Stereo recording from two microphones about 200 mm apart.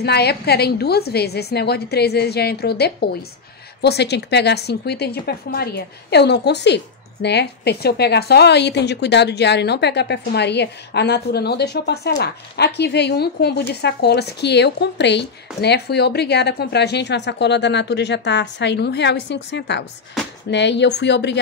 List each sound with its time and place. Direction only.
0.0 s a woman's voice: 55° left (ahead or behind)